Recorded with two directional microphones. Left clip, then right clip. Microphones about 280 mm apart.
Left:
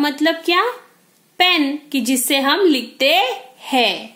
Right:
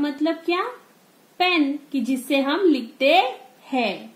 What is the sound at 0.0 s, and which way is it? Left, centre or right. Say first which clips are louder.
A woman's voice: left 6 dB; centre.